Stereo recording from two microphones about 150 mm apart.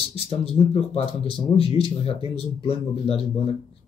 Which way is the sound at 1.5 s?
40° left (ahead or behind).